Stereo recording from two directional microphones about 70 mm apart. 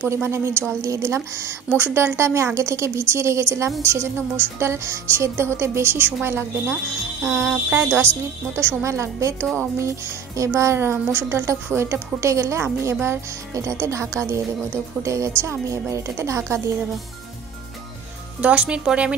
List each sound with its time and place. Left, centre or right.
0.1 s speech: right
18.4 s speech: centre